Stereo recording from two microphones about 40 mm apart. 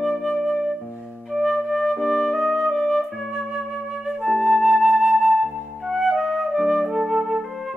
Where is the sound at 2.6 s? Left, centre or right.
Centre.